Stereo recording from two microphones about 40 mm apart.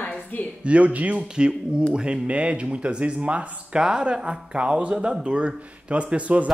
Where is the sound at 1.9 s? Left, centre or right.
Right.